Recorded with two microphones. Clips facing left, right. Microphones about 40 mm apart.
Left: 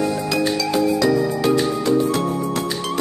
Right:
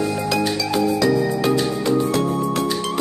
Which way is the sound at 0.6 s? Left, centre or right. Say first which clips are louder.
Left 1 dB; centre.